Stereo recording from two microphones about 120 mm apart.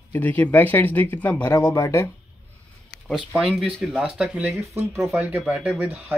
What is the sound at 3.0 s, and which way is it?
Speech, centre (ahead or behind).